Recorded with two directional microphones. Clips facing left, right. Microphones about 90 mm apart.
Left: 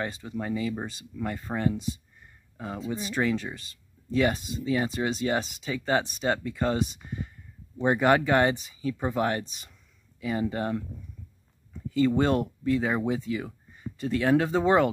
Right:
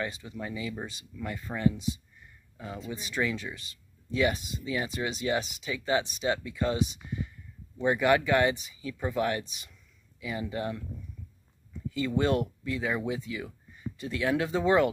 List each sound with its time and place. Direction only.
0.0 s speech: 35° left (ahead or behind)
11.9 s speech: 35° left (ahead or behind)